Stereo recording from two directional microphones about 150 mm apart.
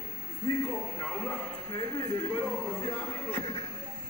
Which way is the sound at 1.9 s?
20° left (ahead or behind).